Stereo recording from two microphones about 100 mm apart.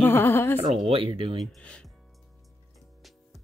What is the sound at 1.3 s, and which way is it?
Speech, 5° left (ahead or behind).